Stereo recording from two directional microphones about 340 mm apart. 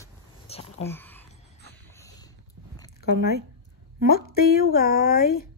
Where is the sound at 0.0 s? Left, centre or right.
Centre.